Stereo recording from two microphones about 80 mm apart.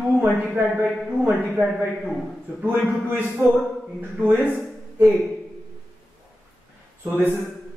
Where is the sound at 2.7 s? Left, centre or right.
Right.